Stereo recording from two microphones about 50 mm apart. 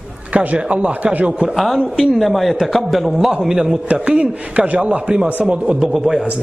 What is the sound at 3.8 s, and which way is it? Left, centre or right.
A man's voice, right.